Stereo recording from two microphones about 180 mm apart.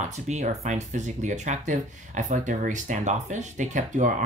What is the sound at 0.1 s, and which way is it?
Speech, 40° right (ahead or behind).